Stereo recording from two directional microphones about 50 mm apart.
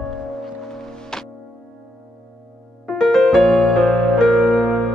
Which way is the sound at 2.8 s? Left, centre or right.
Centre.